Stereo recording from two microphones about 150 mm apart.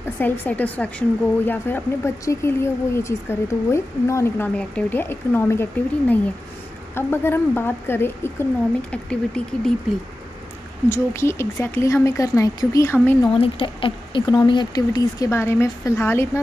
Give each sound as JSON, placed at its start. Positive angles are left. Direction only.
{"t": 0.2, "sound": "a woman's voice", "side_deg": 10}
{"t": 10.9, "sound": "a woman's voice", "side_deg": 15}
{"t": 13.3, "sound": "speech", "side_deg": 40}